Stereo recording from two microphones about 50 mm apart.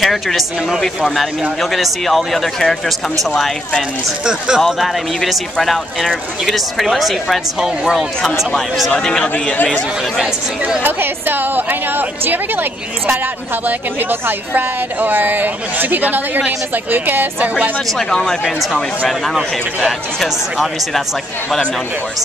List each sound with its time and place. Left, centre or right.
0.0 s speech: centre
4.2 s speech: centre
4.7 s speech: centre
8.9 s speech: centre
10.8 s speech: right
17.9 s speech: centre